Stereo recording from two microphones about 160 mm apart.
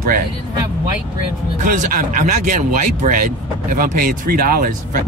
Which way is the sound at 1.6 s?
55° right (ahead or behind).